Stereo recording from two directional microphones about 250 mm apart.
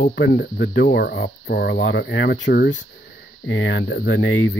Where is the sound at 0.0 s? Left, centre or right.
Left.